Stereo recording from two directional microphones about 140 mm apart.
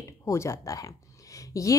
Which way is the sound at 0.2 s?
20° left (ahead or behind).